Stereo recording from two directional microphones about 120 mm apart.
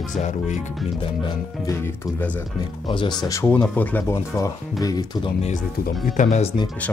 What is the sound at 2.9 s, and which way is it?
Speech, 40° left (ahead or behind).